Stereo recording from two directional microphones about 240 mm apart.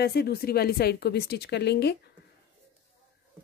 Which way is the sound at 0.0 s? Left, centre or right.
Left.